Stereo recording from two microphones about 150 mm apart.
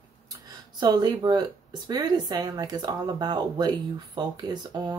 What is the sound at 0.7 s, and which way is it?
Speech, 30° right (ahead or behind).